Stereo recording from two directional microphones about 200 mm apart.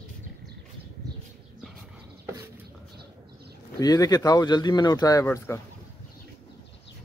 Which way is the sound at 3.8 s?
20° left (ahead or behind).